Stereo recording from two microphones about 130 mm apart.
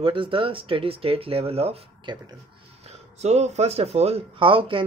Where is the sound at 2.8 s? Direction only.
55° right (ahead or behind).